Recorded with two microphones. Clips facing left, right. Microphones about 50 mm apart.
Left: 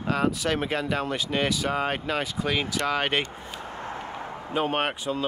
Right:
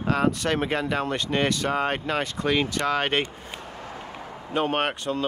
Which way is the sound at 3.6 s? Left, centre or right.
Left.